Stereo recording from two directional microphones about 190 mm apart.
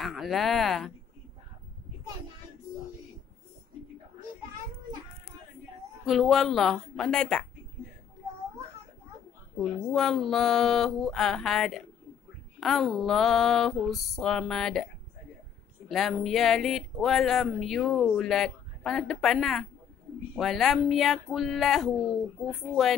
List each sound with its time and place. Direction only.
0.0 s speech: centre (ahead or behind)
6.0 s speech: centre (ahead or behind)
9.6 s speech: 5° left (ahead or behind)
15.9 s speech: centre (ahead or behind)